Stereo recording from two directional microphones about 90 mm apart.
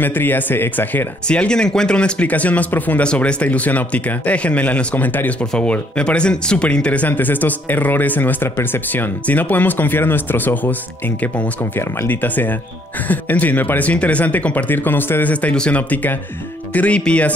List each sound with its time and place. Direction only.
0.0 s speech: 20° left (ahead or behind)
12.0 s speech: 20° left (ahead or behind)